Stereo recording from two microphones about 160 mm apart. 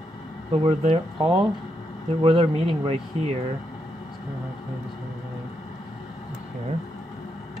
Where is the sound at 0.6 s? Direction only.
35° right (ahead or behind).